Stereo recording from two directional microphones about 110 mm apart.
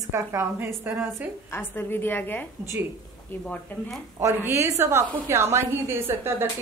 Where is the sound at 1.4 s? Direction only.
20° left (ahead or behind).